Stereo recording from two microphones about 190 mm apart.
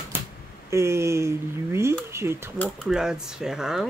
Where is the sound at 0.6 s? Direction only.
15° right (ahead or behind).